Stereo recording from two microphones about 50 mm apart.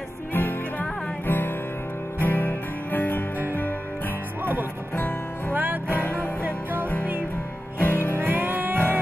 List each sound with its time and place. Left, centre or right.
0.3 s music: left
5.5 s music: right
5.9 s music: left
6.4 s music: right
7.8 s music: left
8.1 s music: right